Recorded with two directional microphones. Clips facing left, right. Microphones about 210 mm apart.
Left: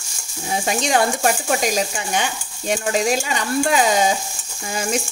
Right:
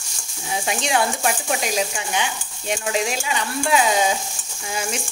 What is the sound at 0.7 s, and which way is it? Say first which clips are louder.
Speech: left 3 dB; 45° left (ahead or behind).